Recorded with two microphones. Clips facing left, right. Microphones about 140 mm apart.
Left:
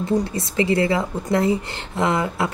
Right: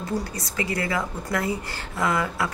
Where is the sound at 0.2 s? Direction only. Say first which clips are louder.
Left 8 dB; 25° left (ahead or behind).